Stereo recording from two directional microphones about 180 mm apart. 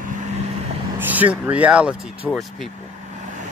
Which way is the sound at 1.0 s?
10° right (ahead or behind).